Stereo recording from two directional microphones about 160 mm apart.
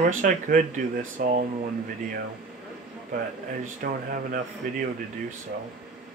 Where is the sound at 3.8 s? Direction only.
60° right (ahead or behind).